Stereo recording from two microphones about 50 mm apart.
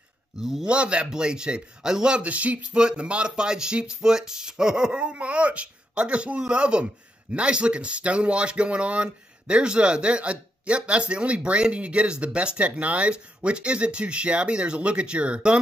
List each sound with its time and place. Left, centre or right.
0.4 s speech: centre
0.7 s speech: right
2.2 s speech: right